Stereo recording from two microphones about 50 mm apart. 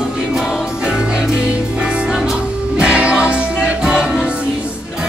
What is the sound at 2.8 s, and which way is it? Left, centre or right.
Music, right.